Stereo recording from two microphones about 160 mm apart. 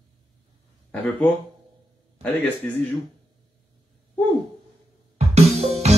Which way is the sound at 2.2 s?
10° left (ahead or behind).